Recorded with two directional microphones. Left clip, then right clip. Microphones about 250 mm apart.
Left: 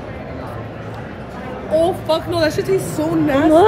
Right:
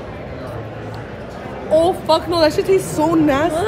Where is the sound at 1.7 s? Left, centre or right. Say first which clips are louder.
Right 2 dB; centre.